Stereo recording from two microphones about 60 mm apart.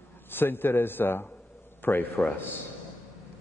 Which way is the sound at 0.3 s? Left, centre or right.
Left.